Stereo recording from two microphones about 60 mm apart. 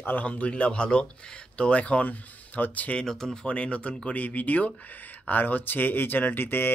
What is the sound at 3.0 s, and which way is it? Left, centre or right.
Speech, centre.